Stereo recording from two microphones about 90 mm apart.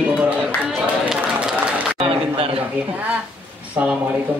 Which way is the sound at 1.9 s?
90° right.